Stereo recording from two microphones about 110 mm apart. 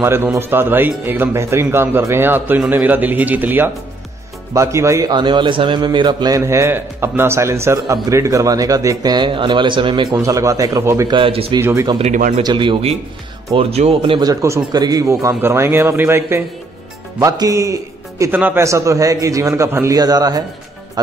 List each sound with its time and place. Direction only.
0.0 s a man's voice: 25° right (ahead or behind)
5.1 s a man's voice: 45° right (ahead or behind)
6.4 s a man's voice: 25° right (ahead or behind); by 10.0 s 50° right (ahead or behind)
10.1 s a man's voice: 30° right (ahead or behind)
11.1 s speech: 50° right (ahead or behind)
11.6 s a man's voice: 25° right (ahead or behind)
12.4 s a man's voice: 50° right (ahead or behind)
13.6 s speech: 65° right (ahead or behind)
14.2 s a man's voice: 30° right (ahead or behind)
17.2 s speech: 35° right (ahead or behind)
18.3 s a man's voice: 20° right (ahead or behind); by 20.4 s 35° right (ahead or behind)